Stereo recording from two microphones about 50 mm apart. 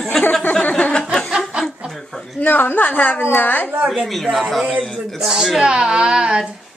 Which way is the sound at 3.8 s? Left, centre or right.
Centre.